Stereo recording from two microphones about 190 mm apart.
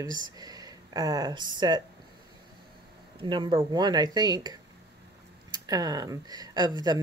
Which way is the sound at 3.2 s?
25° right (ahead or behind).